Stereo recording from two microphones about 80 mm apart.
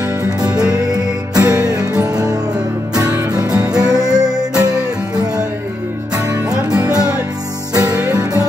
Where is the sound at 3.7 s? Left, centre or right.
Centre.